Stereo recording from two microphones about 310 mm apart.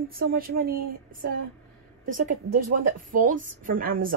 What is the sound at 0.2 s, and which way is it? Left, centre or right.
A woman's voice, right.